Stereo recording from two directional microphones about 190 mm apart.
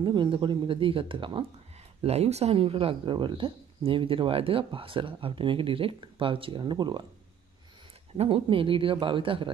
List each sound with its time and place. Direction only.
0.0 s speech: 25° right (ahead or behind)
8.2 s speech: 30° right (ahead or behind)